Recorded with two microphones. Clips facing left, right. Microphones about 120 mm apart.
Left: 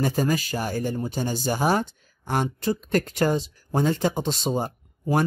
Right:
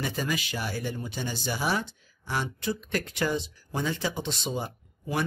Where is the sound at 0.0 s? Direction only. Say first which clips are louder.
Left 7 dB; 40° left (ahead or behind).